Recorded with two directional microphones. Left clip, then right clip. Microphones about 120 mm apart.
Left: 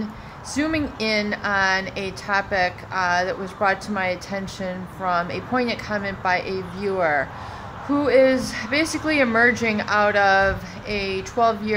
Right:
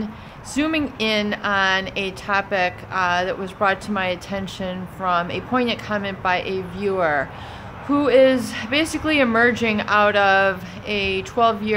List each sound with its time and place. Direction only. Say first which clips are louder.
0.6 s a woman's voice: right 2 dB; 15° right (ahead or behind)